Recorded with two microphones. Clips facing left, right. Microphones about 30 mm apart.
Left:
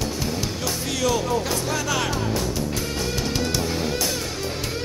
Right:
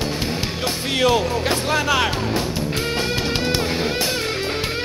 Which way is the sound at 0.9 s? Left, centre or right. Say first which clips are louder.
Right 5 dB; right.